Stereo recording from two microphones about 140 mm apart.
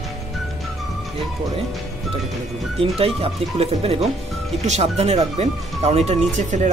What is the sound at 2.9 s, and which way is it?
Speech, 40° right (ahead or behind).